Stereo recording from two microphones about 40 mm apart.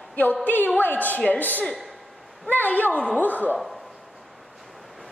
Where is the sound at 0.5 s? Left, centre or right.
Left.